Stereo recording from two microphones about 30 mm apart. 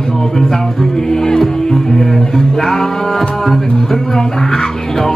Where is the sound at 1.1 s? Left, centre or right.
Centre.